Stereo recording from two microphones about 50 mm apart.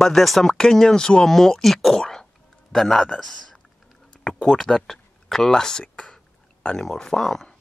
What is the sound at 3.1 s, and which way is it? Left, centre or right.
Typing, centre.